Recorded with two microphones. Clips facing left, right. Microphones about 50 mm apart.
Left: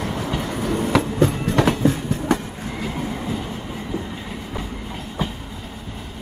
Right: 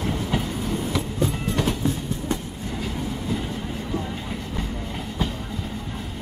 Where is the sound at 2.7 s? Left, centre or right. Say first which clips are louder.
Left 2 dB; left.